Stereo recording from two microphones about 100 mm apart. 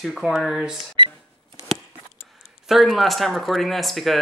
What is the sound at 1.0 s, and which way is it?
Cash register, 55° right (ahead or behind).